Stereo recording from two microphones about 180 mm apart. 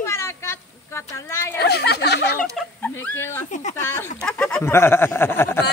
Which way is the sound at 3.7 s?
15° left (ahead or behind).